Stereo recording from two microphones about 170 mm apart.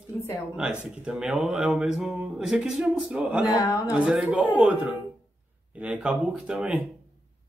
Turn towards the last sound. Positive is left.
turn(degrees=-5)  # may be behind; listen again after turning